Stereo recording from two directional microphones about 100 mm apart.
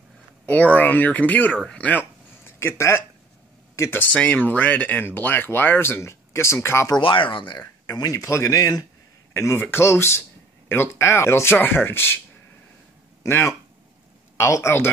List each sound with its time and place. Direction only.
0.7 s speech: 15° left (ahead or behind)
1.7 s a sound: 15° left (ahead or behind)
3.7 s speech: 25° left (ahead or behind)
7.0 s speech: 60° left (ahead or behind); by 8.8 s 35° left (ahead or behind)
9.3 s speech: 25° left (ahead or behind)
13.2 s speech: 30° left (ahead or behind)